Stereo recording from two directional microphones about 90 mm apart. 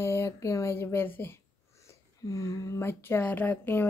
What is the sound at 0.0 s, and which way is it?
Speech, 30° left (ahead or behind).